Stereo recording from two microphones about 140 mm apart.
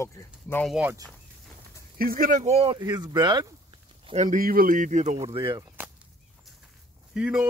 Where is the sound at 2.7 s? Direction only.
25° right (ahead or behind).